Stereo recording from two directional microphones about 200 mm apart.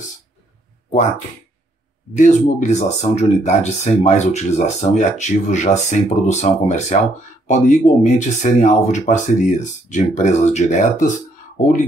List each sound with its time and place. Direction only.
2.1 s speech: 35° left (ahead or behind)